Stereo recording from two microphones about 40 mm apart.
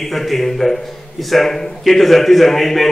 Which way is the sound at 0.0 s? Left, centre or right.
Centre.